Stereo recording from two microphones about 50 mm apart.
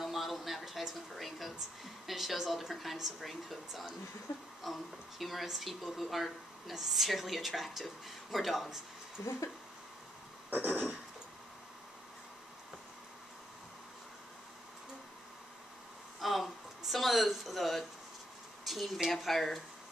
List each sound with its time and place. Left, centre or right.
0.0 s speech: centre
4.3 s speech: left
5.2 s speech: centre
9.2 s speech: left
10.5 s a sound: right
16.2 s a sound: centre
19.0 s speech: centre